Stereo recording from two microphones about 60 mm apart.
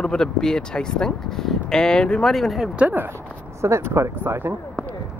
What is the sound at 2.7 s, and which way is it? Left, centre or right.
Speech, right.